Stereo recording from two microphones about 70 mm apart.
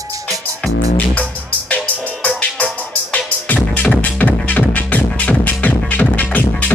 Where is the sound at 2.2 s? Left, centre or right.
Left.